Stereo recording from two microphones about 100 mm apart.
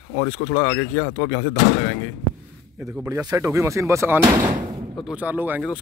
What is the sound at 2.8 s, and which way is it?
Speech, 30° right (ahead or behind).